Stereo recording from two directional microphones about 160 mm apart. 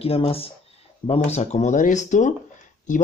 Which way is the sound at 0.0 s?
35° left (ahead or behind).